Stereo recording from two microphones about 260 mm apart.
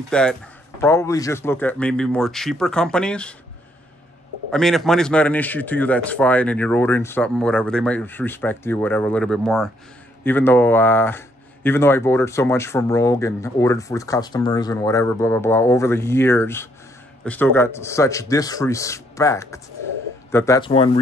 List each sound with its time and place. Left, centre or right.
0.1 s speech: centre
4.5 s speech: centre